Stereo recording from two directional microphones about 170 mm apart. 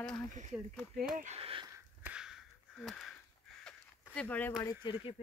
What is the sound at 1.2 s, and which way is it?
Speech, 35° right (ahead or behind).